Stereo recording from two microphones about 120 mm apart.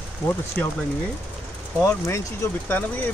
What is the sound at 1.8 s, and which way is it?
Speech, 25° left (ahead or behind).